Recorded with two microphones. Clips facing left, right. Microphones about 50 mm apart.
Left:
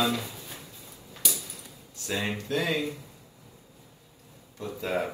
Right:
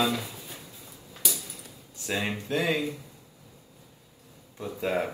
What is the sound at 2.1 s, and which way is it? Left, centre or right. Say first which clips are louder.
Speech: right 1 dB; centre.